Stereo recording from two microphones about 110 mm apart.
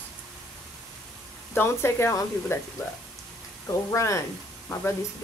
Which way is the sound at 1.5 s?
20° left (ahead or behind).